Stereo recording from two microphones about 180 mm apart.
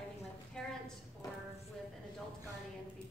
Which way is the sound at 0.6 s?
5° left (ahead or behind).